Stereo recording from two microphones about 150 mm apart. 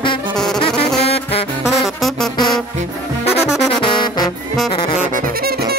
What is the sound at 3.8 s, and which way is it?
Music, 30° left (ahead or behind).